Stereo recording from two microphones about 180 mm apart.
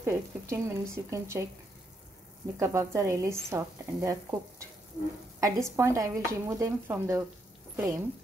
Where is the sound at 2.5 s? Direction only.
15° right (ahead or behind).